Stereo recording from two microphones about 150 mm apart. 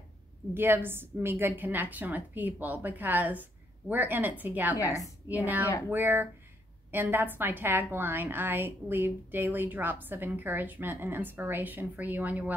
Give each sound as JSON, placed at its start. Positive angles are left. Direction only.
{"t": 0.6, "sound": "a woman's voice", "side_deg": -15}
{"t": 4.7, "sound": "a woman's voice", "side_deg": 25}
{"t": 5.3, "sound": "a woman's voice", "side_deg": -10}